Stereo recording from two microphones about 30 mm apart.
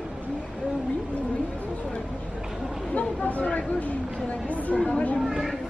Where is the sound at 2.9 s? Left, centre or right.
Left.